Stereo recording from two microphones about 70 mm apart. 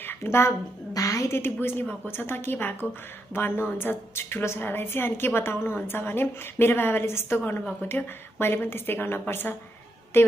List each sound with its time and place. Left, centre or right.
0.0 s a woman's voice: left
0.9 s a woman's voice: left
1.3 s a woman's voice: left